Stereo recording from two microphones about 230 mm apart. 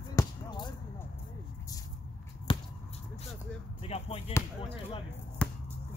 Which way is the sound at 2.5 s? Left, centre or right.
Left.